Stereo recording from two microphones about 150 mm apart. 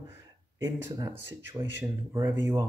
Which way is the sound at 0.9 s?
20° right (ahead or behind).